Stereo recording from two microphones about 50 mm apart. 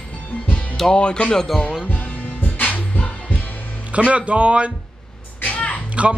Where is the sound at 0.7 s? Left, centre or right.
Centre.